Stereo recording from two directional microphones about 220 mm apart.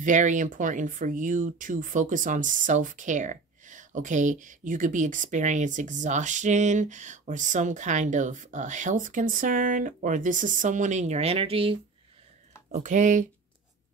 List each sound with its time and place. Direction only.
0.0 s speech: 35° right (ahead or behind)